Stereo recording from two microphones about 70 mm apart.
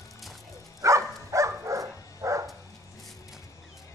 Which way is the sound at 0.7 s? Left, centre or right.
Right.